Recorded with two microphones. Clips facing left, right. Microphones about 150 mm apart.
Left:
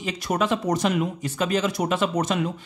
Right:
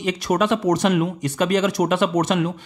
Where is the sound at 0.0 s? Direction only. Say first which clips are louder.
Right 5 dB; 75° right (ahead or behind).